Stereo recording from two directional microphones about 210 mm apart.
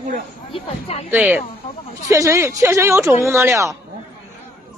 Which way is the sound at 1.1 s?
10° right (ahead or behind).